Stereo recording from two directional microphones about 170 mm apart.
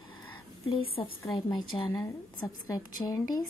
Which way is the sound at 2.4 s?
20° left (ahead or behind).